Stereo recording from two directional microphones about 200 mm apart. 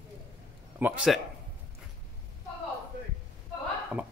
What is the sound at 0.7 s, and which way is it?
Speech, 5° right (ahead or behind).